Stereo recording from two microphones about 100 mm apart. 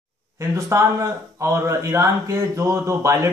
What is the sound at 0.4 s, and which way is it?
A man's voice, 30° right (ahead or behind).